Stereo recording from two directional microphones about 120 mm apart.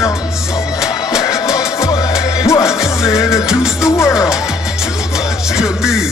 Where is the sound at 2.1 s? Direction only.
5° right (ahead or behind).